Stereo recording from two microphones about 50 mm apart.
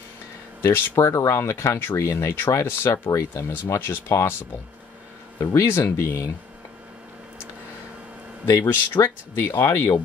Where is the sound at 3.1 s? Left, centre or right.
Left.